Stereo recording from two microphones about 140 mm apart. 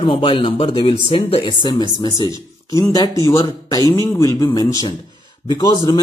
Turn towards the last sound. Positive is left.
turn(degrees=30)  # may be behind; listen again after turning